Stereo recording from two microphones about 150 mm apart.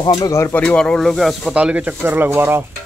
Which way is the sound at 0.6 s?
5° left (ahead or behind).